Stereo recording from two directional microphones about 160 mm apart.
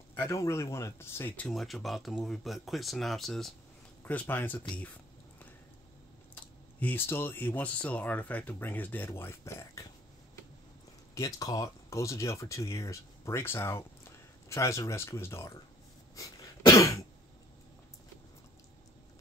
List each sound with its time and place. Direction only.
0.1 s speech: 15° left (ahead or behind)
4.0 s speech: 10° left (ahead or behind)
6.8 s speech: 10° left (ahead or behind)
11.1 s speech: 25° left (ahead or behind)
16.2 s cough: 20° left (ahead or behind)